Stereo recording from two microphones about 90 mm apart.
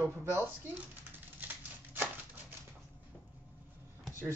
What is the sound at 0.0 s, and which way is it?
Speech, 25° right (ahead or behind).